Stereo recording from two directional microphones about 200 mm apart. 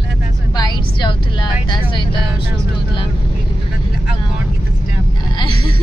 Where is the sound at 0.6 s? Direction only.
20° left (ahead or behind).